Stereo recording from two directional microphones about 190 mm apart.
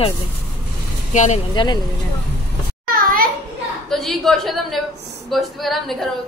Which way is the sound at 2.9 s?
50° right (ahead or behind).